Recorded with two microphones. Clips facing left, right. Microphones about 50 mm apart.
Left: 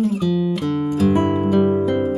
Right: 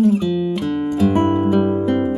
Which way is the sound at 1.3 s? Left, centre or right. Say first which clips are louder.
Right 1 dB; centre.